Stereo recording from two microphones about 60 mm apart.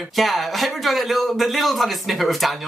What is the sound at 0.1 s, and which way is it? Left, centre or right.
Speech, centre.